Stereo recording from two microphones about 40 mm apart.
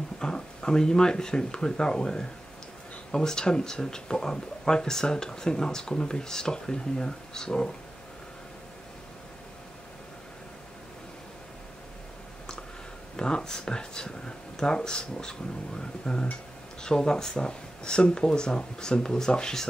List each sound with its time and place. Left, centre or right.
0.2 s speech: centre
13.1 s speech: left